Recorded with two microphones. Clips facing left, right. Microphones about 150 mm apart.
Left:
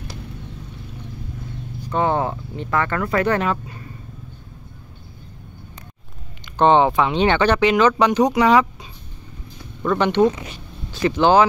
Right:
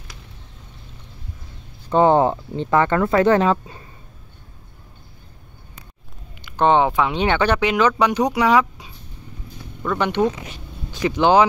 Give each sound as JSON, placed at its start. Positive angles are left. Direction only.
{"t": 1.9, "sound": "speech", "side_deg": -30}
{"t": 6.6, "sound": "speech", "side_deg": -10}
{"t": 9.9, "sound": "speech", "side_deg": -10}